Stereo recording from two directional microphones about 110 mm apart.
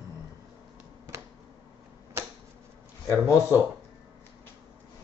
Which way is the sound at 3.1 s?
25° left (ahead or behind).